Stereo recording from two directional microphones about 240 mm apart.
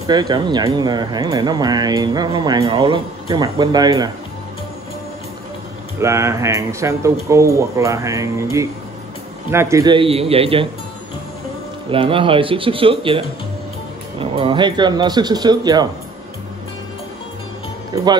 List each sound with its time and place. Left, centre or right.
0.0 s speech: centre
5.9 s speech: centre
11.9 s speech: right